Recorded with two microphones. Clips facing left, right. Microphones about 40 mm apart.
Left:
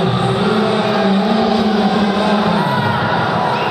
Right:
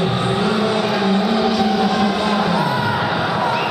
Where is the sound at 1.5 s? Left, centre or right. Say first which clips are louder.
Left 2 dB; centre.